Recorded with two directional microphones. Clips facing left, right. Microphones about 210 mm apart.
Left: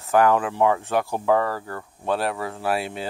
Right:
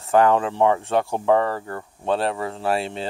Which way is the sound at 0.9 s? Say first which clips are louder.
Right 2 dB; 25° right (ahead or behind).